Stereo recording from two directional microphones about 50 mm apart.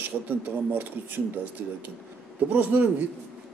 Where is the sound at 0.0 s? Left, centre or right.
Right.